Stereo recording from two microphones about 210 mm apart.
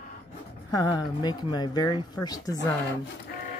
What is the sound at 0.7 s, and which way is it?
Speech, 15° left (ahead or behind).